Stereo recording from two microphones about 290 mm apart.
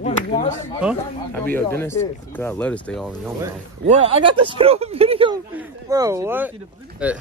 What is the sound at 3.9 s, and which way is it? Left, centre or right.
Speech, right.